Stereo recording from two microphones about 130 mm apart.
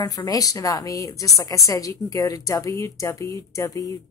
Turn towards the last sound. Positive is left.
turn(degrees=25)  # may be behind; listen again after turning